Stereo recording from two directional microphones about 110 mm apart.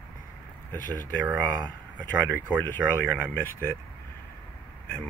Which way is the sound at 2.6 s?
15° left (ahead or behind).